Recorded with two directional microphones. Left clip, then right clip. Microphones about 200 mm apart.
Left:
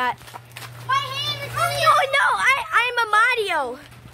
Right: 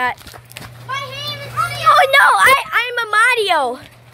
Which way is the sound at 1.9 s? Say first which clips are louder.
Right 8 dB; 25° right (ahead or behind).